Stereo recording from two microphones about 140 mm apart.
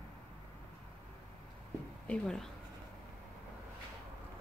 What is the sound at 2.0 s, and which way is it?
Speech, 5° left (ahead or behind).